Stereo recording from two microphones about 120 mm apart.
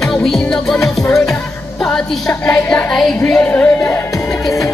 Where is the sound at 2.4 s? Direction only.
10° left (ahead or behind).